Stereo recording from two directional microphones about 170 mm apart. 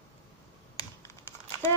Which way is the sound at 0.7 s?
20° left (ahead or behind).